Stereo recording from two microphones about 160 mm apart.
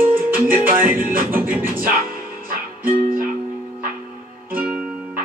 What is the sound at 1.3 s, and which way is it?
Music, 10° right (ahead or behind).